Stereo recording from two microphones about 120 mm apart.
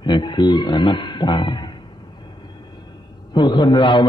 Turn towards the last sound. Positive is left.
turn(degrees=40)  # may be behind; listen again after turning